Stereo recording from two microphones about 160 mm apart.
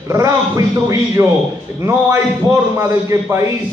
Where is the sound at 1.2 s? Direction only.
15° right (ahead or behind).